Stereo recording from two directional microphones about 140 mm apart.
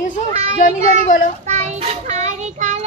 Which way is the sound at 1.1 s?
70° left (ahead or behind).